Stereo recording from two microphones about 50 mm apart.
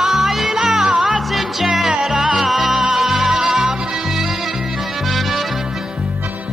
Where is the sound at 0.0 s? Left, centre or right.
Centre.